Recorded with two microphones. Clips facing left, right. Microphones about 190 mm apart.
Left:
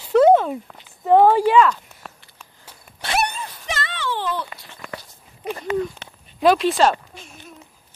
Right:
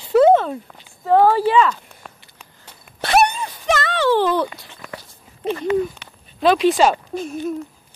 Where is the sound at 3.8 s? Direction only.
40° right (ahead or behind).